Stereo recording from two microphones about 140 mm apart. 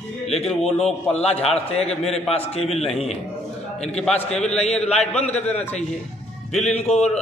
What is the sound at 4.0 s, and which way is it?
Speech, 5° left (ahead or behind).